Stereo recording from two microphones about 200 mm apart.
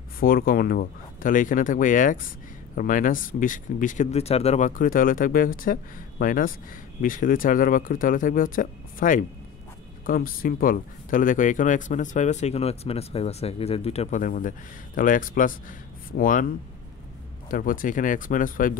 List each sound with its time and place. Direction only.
0.2 s speech: 45° left (ahead or behind)
17.5 s speech: 45° left (ahead or behind)